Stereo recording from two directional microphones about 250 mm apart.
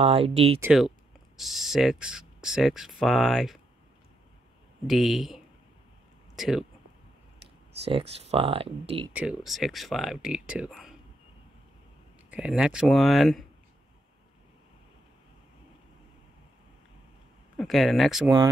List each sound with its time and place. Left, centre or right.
0.0 s speech: right
0.6 s speech: centre
4.8 s speech: centre
8.1 s speech: right
9.1 s speech: centre
12.3 s speech: centre
17.6 s speech: centre